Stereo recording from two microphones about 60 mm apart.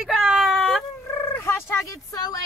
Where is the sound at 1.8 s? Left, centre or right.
Left.